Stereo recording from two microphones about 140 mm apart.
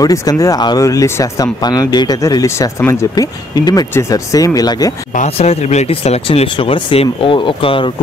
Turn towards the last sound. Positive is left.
turn(degrees=40)  # may be behind; listen again after turning